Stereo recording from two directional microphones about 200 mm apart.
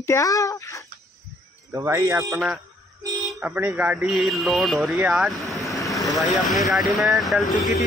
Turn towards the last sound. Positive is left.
turn(degrees=0)  # may be behind; listen again after turning